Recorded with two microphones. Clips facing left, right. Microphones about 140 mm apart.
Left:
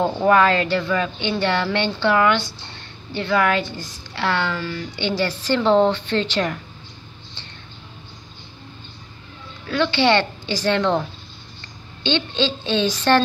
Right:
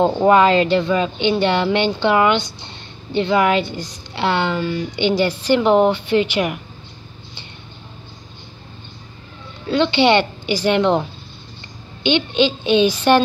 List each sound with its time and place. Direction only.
0.0 s speech: 20° right (ahead or behind)
9.7 s a woman's voice: 20° right (ahead or behind)